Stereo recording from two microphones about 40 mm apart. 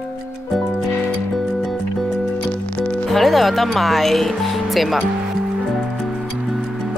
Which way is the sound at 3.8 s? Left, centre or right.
Centre.